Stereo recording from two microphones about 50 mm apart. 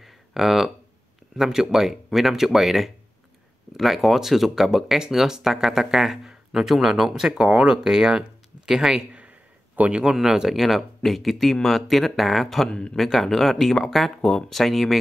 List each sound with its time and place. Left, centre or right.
0.0 s a sound: centre
1.3 s speech: centre
10.1 s speech: centre
12.6 s speech: centre